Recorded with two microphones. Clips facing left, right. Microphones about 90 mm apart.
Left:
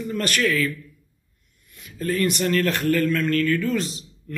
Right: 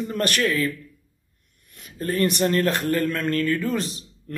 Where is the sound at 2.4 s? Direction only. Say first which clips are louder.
Right 1 dB; 25° right (ahead or behind).